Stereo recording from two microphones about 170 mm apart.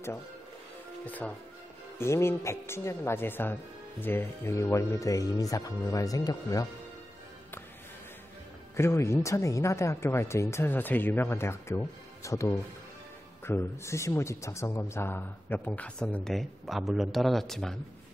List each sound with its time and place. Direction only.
1.0 s speech: 10° left (ahead or behind)
8.7 s speech: 15° left (ahead or behind)